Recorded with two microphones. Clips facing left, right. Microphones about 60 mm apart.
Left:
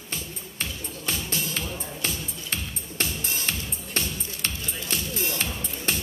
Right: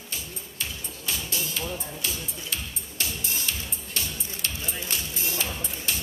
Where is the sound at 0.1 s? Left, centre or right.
Left.